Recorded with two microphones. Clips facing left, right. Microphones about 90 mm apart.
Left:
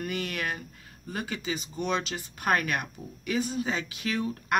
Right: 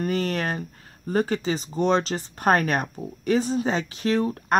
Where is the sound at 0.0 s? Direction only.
40° right (ahead or behind).